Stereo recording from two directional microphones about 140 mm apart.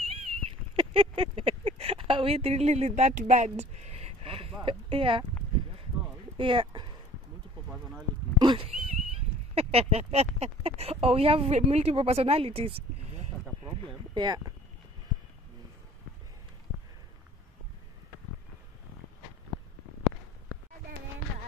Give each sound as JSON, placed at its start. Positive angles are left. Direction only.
{"t": 0.1, "sound": "a sound", "side_deg": -40}
{"t": 4.6, "sound": "speech", "side_deg": -40}
{"t": 6.3, "sound": "speech", "side_deg": -35}
{"t": 8.4, "sound": "horse", "side_deg": -30}
{"t": 8.6, "sound": "speech", "side_deg": -45}
{"t": 14.1, "sound": "speech", "side_deg": -30}